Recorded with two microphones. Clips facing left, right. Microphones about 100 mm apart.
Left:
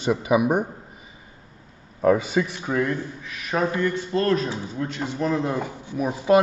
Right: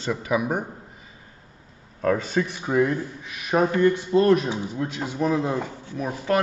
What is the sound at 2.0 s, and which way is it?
A man's voice, 10° left (ahead or behind).